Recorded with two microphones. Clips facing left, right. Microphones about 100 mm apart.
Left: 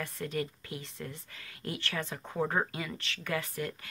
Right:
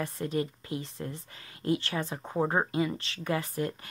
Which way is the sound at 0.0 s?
25° right (ahead or behind).